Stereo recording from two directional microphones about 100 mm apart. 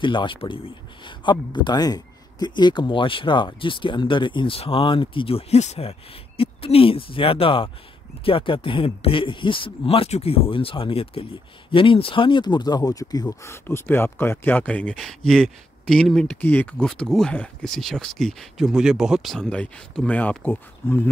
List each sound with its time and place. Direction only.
0.0 s speech: 55° left (ahead or behind)
4.6 s speech: 65° left (ahead or behind); by 13.3 s 40° left (ahead or behind)
13.4 s speech: 25° left (ahead or behind)
15.0 s speech: 5° left (ahead or behind)
16.3 s speech: 20° left (ahead or behind)
16.7 s speech: 5° left (ahead or behind)
19.5 s speech: 15° left (ahead or behind)